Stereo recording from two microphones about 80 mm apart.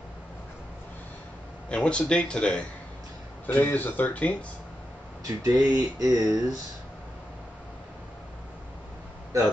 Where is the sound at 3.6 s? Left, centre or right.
Left.